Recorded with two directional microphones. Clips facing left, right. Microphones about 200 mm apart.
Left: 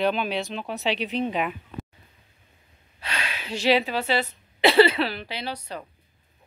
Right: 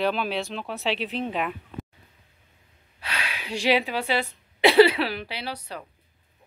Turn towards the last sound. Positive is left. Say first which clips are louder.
# left 1 dB
turn(degrees=-10)  # may be behind; listen again after turning